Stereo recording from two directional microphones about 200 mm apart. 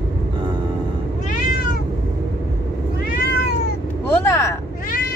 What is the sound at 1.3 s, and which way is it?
Cat, 45° left (ahead or behind).